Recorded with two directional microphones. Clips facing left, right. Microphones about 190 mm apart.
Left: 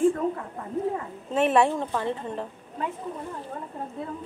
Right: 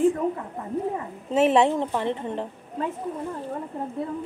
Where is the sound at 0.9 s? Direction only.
20° right (ahead or behind).